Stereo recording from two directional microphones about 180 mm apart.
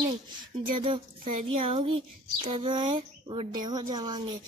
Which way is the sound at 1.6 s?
30° right (ahead or behind).